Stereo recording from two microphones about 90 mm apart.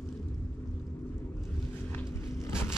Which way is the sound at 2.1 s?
30° left (ahead or behind).